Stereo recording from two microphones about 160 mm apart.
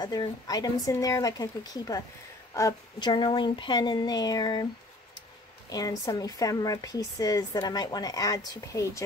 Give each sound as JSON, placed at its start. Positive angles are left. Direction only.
{"t": 0.0, "sound": "a woman's voice", "side_deg": 25}
{"t": 5.7, "sound": "a woman's voice", "side_deg": 25}